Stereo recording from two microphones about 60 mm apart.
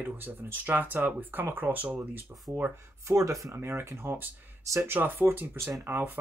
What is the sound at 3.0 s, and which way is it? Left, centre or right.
Speech, right.